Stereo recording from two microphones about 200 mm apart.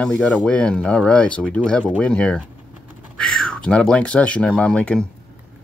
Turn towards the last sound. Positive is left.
turn(degrees=5)  # may be behind; listen again after turning